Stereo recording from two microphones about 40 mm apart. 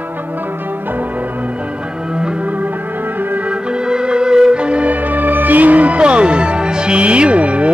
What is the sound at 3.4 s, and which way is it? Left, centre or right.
Music, right.